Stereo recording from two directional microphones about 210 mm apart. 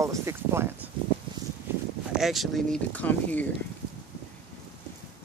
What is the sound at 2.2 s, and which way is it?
Speech, centre (ahead or behind).